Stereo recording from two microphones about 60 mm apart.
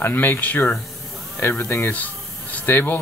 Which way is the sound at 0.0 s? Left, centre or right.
Left.